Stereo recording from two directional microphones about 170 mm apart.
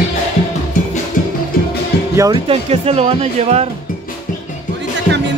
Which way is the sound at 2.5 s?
35° right (ahead or behind).